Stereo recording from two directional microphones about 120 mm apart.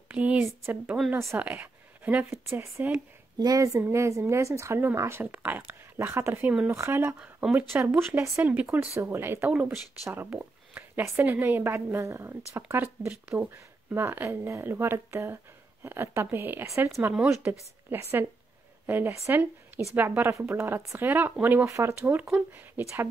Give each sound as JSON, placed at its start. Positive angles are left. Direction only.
{"t": 0.1, "sound": "a woman's voice", "side_deg": -10}
{"t": 3.3, "sound": "a woman's voice", "side_deg": -30}